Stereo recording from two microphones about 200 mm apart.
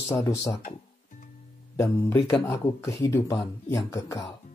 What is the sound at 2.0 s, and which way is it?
Speech, 15° left (ahead or behind).